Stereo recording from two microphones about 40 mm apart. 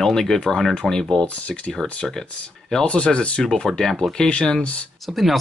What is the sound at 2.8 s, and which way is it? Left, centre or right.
Speech, left.